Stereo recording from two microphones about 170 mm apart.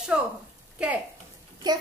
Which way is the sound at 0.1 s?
5° right (ahead or behind).